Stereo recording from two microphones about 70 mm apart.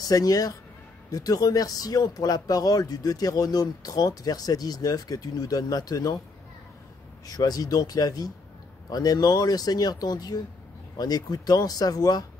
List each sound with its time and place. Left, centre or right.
0.1 s speech: left
7.2 s speech: left